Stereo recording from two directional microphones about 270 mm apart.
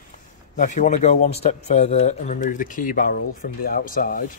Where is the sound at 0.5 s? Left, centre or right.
Left.